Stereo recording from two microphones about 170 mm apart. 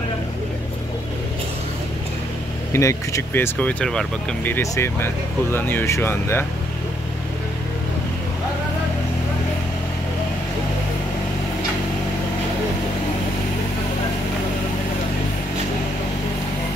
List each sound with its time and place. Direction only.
2.7 s speech: 15° left (ahead or behind)
4.6 s speech: 15° left (ahead or behind)